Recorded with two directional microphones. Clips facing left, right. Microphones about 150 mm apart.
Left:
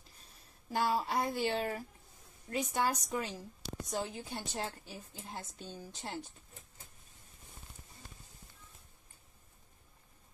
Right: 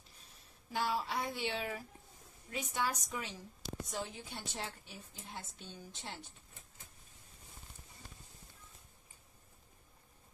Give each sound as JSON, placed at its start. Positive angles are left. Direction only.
{"t": 0.7, "sound": "a woman's voice", "side_deg": 45}